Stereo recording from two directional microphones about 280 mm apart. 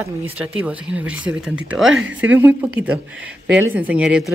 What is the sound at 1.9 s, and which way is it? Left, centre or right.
Speech, right.